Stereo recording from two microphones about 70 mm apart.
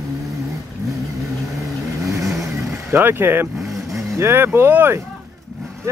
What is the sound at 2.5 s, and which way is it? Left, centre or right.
Vehicle, right.